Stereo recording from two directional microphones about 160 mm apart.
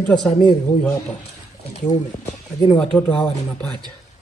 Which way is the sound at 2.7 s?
5° left (ahead or behind).